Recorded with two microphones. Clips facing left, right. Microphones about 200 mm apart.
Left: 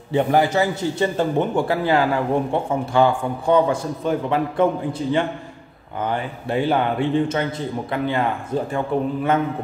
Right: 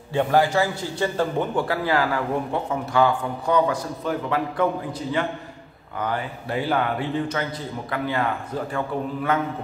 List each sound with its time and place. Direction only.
0.1 s a man's voice: 20° left (ahead or behind)
5.9 s a man's voice: 25° left (ahead or behind)